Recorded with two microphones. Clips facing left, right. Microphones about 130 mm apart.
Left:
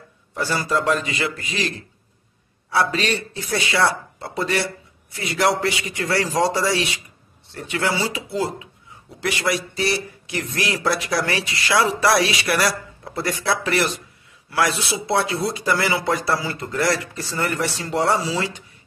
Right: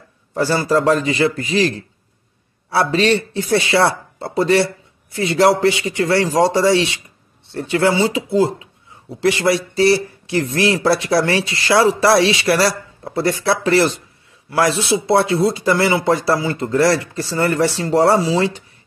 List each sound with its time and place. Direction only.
0.3 s speech: 30° right (ahead or behind)